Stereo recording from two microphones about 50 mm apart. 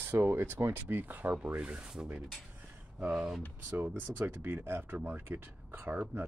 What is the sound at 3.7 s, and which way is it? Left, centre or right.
Speech, right.